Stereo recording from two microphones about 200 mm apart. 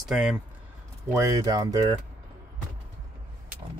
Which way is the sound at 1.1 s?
20° right (ahead or behind).